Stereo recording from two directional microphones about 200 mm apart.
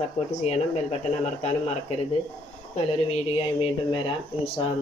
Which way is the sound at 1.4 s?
35° left (ahead or behind).